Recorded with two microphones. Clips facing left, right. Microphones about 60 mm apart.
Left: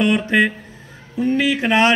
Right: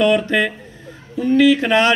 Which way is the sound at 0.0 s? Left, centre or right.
Centre.